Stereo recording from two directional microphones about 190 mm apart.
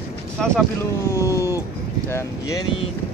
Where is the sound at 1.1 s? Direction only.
15° left (ahead or behind).